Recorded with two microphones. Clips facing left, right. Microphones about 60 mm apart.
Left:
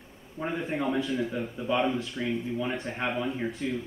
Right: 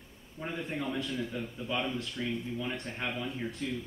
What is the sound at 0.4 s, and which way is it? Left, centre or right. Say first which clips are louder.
Speech: left 6 dB; left.